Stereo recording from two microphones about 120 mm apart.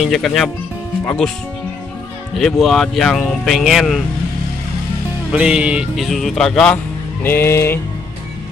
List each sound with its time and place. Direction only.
0.0 s speech: centre (ahead or behind)
2.3 s speech: centre (ahead or behind)
5.3 s speech: 10° right (ahead or behind)
7.2 s music: 20° left (ahead or behind)